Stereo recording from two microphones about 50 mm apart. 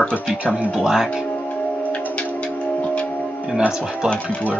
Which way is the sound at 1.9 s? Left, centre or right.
Left.